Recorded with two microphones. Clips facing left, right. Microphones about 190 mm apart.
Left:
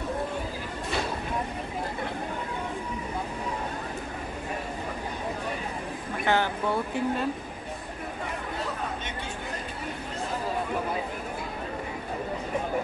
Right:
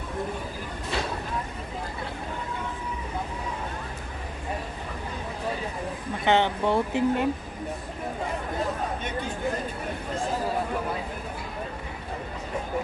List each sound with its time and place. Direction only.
6.2 s speech: 25° right (ahead or behind)